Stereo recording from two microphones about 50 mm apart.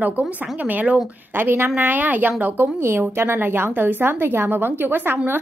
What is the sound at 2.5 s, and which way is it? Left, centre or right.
A woman's voice, right.